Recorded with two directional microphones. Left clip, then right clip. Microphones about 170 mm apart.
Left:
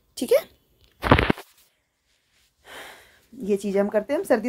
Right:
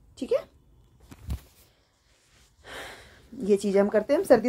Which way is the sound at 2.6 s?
5° left (ahead or behind).